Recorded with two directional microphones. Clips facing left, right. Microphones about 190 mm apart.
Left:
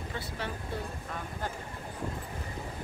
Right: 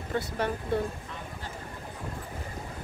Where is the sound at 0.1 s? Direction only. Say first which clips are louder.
Right 10 dB; 50° right (ahead or behind).